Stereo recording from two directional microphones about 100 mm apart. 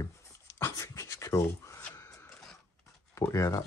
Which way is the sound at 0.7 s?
30° left (ahead or behind).